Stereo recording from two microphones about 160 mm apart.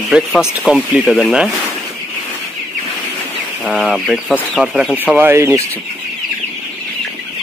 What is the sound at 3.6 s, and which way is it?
Speech, centre (ahead or behind).